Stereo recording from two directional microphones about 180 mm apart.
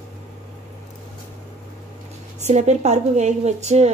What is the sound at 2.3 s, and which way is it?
A woman's voice, 40° right (ahead or behind).